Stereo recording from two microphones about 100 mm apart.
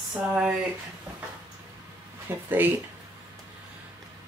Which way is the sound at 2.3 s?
20° right (ahead or behind).